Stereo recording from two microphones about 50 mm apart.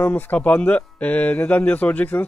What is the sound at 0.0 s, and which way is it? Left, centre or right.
A man's voice, left.